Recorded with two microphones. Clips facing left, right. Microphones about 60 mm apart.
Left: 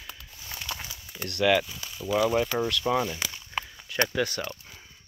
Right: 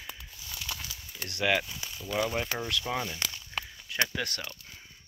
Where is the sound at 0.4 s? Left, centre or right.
Left.